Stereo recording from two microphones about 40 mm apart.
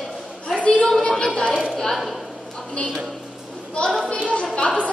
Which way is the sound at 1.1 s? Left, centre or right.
Centre.